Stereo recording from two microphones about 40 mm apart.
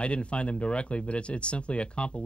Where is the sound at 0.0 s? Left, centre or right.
Left.